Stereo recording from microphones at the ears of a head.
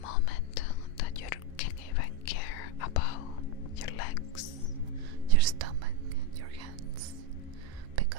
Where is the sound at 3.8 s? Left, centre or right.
Left.